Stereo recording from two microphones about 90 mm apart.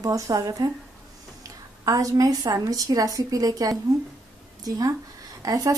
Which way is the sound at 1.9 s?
40° right (ahead or behind).